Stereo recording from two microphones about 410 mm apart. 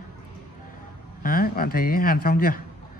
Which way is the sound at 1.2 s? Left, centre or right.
Left.